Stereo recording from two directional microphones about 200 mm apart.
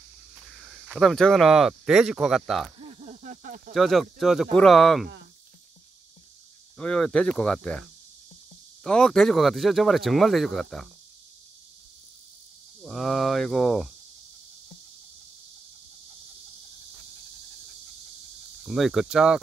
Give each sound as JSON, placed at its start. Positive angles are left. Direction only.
{"t": 0.5, "sound": "speech", "side_deg": 0}
{"t": 2.9, "sound": "snake", "side_deg": -35}
{"t": 3.7, "sound": "speech", "side_deg": 0}
{"t": 6.8, "sound": "speech", "side_deg": 5}
{"t": 8.8, "sound": "speech", "side_deg": 0}
{"t": 12.8, "sound": "speech", "side_deg": 0}
{"t": 18.6, "sound": "speech", "side_deg": 0}